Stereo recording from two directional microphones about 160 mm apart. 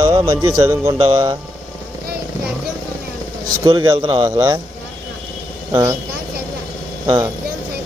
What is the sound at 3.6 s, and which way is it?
Speech, 25° right (ahead or behind).